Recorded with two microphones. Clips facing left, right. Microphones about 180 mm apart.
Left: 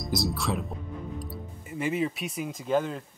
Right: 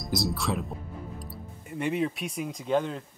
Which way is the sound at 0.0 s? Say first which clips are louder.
Even; centre (ahead or behind).